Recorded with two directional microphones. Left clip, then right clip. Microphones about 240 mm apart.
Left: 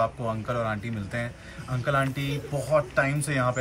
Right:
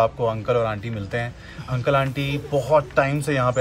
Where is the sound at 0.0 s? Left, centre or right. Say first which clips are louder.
Right 7 dB; centre.